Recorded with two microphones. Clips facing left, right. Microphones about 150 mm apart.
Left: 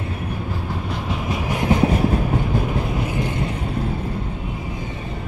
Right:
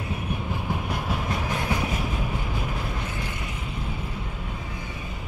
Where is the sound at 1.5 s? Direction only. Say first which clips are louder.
Left 10 dB; 20° left (ahead or behind).